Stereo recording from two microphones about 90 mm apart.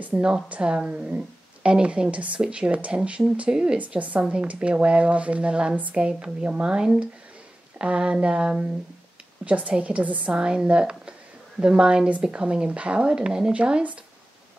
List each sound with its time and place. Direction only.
0.0 s speech: 15° right (ahead or behind)